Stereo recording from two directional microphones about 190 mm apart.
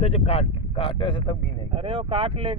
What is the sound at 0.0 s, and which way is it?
Speech, 30° left (ahead or behind).